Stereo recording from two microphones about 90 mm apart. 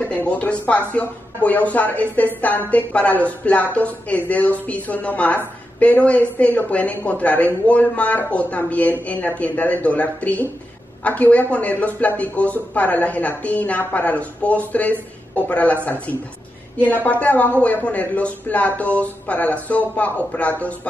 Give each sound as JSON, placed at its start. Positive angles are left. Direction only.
{"t": 0.1, "sound": "speech", "side_deg": 15}